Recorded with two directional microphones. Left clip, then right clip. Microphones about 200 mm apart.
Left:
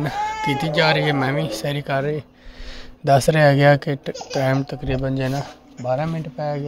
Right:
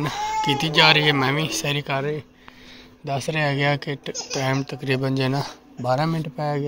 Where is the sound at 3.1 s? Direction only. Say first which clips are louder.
Left 9 dB; 45° left (ahead or behind).